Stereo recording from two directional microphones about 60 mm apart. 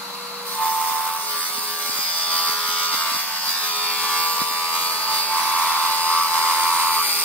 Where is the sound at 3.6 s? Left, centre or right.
Left.